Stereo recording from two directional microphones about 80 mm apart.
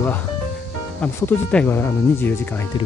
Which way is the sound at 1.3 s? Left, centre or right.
Centre.